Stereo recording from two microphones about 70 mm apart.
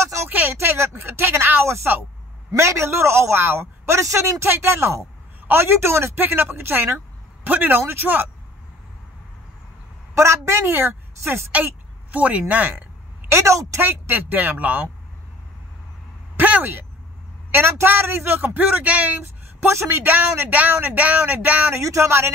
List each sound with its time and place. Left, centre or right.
0.3 s a sound: right
2.5 s a man's voice: right
4.5 s a man's voice: right
10.1 s a man's voice: right
11.1 s speech: right
11.5 s speech: right
13.3 s a woman's voice: right
13.7 s speech: right
16.3 s a man's voice: right
19.2 s speech: right
21.7 s a man's voice: right